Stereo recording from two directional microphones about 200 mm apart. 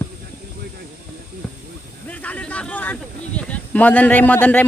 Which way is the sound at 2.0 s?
5° left (ahead or behind).